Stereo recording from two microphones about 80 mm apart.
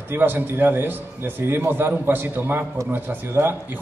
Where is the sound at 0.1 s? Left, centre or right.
Right.